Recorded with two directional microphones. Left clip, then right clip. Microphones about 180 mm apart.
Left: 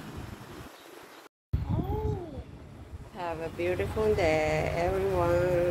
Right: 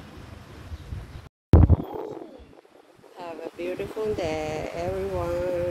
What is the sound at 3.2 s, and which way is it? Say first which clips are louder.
Speech: left 1 dB; 50° right (ahead or behind).